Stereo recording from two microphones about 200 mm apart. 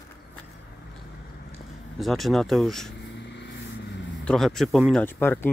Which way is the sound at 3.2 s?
60° left (ahead or behind).